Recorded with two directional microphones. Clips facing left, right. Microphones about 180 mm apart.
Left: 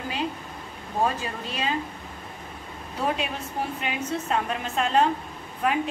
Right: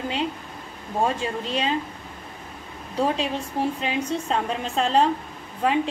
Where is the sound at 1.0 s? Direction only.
30° right (ahead or behind).